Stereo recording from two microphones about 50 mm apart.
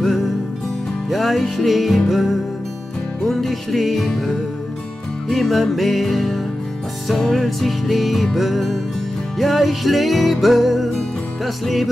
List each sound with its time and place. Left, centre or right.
0.0 s music: centre
5.3 s music: centre